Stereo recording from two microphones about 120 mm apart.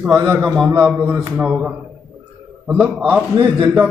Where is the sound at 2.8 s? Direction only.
Centre (ahead or behind).